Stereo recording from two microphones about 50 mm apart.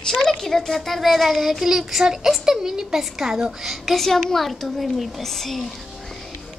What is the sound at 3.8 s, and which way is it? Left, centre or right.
A child's voice, centre.